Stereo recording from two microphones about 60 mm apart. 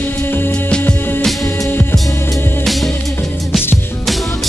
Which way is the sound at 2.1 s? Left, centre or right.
Left.